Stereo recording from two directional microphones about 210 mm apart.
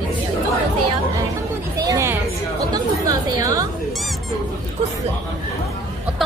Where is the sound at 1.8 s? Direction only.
15° right (ahead or behind).